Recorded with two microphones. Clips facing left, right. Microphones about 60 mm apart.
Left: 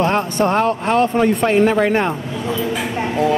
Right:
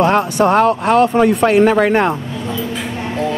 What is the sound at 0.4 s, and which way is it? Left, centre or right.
Speech, right.